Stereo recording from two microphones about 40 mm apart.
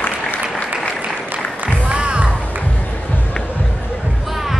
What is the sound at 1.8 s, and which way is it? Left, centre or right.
Music, right.